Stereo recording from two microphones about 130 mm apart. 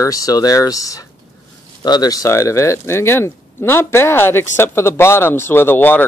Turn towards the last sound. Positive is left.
turn(degrees=15)  # may be behind; listen again after turning